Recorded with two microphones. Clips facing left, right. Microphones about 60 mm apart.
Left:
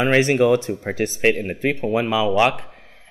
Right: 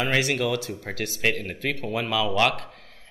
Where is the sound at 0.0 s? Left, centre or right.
Left.